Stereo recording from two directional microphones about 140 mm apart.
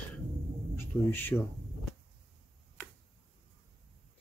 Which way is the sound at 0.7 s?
15° left (ahead or behind).